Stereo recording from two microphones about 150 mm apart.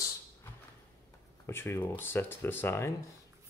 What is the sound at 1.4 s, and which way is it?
Speech, 15° left (ahead or behind).